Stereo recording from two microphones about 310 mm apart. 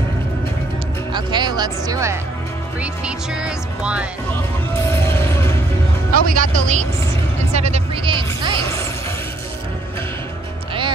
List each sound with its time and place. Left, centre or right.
1.1 s music: centre
4.9 s music: centre
6.1 s speech: right